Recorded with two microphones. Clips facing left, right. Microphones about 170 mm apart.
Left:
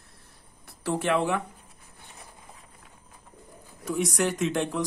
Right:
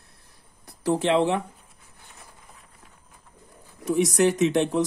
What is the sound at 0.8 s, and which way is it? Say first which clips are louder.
Speech: right 4 dB; 20° right (ahead or behind).